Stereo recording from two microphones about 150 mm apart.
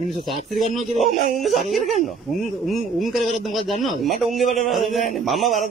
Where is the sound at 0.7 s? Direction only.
Centre (ahead or behind).